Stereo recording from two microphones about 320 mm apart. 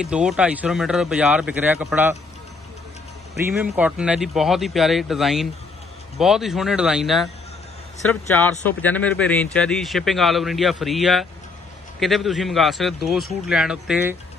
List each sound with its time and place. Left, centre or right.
0.0 s speech: centre
3.3 s speech: centre